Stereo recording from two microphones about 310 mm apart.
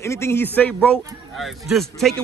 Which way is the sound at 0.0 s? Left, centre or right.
Centre.